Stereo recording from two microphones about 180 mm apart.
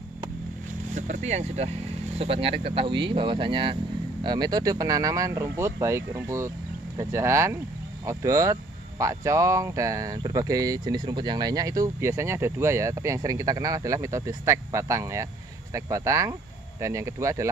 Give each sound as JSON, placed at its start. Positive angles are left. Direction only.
{"t": 0.9, "sound": "speech", "side_deg": -40}